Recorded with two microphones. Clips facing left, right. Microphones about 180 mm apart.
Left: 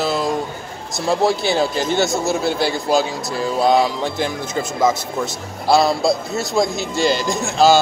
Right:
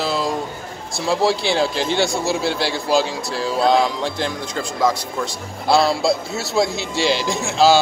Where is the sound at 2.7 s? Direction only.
Centre (ahead or behind).